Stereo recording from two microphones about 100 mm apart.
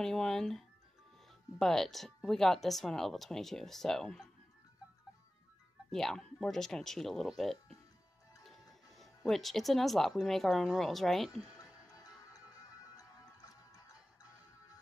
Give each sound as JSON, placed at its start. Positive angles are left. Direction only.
{"t": 0.0, "sound": "speech", "side_deg": 5}
{"t": 5.9, "sound": "speech", "side_deg": 5}
{"t": 11.5, "sound": "music", "side_deg": 35}